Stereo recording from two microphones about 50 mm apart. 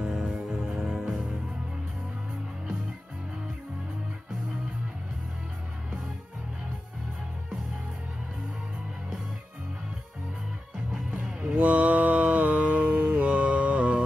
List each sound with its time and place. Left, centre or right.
0.0 s music: centre
10.9 s music: centre
11.5 s mantra: right